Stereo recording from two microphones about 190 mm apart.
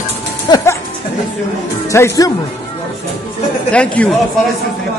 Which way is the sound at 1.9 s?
15° left (ahead or behind).